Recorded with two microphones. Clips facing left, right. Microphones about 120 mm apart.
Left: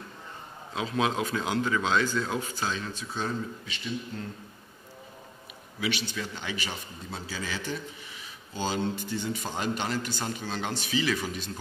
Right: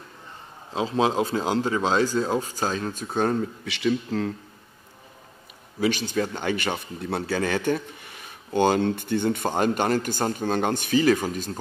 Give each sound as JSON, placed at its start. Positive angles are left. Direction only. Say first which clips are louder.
{"t": 0.7, "sound": "speech", "louder": "right 5 dB", "side_deg": -30}
{"t": 5.8, "sound": "a man's voice", "louder": "right 8 dB", "side_deg": -45}